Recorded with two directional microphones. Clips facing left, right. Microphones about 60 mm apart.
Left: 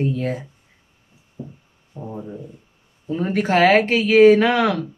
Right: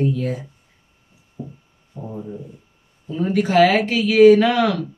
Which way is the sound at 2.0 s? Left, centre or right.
Left.